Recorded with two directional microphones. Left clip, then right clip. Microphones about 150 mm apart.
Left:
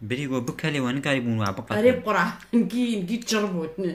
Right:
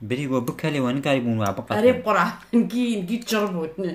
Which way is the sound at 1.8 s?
10° left (ahead or behind).